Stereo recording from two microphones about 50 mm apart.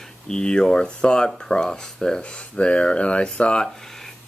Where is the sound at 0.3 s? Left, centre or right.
Centre.